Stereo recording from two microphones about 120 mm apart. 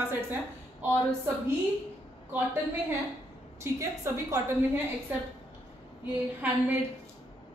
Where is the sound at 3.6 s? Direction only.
25° right (ahead or behind).